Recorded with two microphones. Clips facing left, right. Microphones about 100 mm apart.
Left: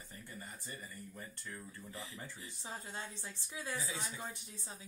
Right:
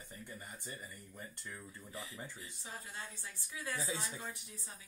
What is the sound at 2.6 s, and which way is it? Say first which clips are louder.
A woman's voice: left 3 dB; 25° left (ahead or behind).